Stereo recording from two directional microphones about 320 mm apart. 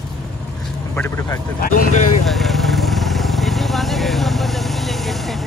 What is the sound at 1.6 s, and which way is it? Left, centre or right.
Speech, left.